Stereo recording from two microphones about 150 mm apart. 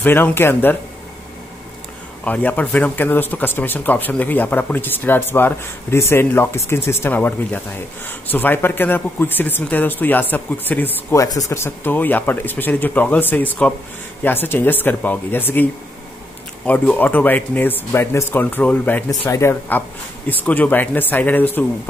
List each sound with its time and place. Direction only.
0.0 s speech: 15° left (ahead or behind)
2.2 s speech: 10° left (ahead or behind)